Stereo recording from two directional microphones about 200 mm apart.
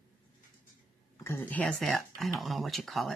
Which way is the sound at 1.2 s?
10° left (ahead or behind).